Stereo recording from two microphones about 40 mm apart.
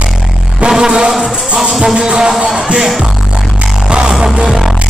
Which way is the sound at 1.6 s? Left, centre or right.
Centre.